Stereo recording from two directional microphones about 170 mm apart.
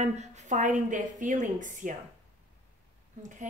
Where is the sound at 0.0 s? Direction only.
40° right (ahead or behind).